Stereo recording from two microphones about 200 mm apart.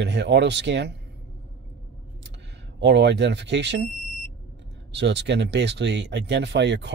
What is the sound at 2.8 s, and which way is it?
Speech, 60° right (ahead or behind).